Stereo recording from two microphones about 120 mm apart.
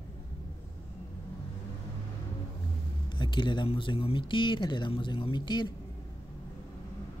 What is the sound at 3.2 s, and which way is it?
Speech, 40° left (ahead or behind).